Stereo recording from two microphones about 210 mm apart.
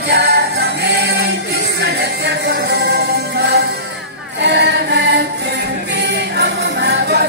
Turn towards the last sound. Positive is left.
turn(degrees=-55)  # may be behind; listen again after turning